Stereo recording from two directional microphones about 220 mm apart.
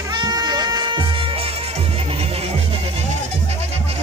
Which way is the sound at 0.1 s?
20° right (ahead or behind).